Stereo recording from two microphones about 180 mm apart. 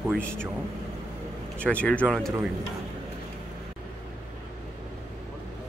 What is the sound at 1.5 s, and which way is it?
Speech, 5° left (ahead or behind).